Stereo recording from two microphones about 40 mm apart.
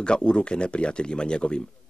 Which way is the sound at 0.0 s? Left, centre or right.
Left.